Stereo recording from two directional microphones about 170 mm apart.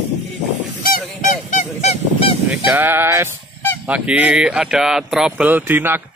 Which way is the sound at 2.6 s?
10° right (ahead or behind).